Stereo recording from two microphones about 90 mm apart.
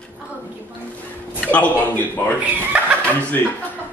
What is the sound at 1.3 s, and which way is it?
Speech, 15° left (ahead or behind).